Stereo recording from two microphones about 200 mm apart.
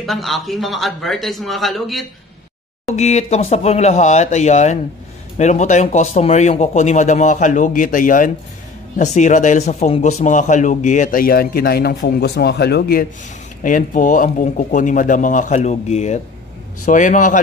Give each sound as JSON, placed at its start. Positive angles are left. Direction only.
{"t": 0.0, "sound": "a man's voice", "side_deg": 0}
{"t": 2.9, "sound": "a man's voice", "side_deg": 35}
{"t": 13.6, "sound": "a man's voice", "side_deg": 40}